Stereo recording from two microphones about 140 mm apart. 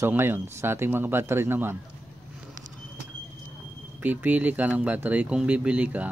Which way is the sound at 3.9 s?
10° right (ahead or behind).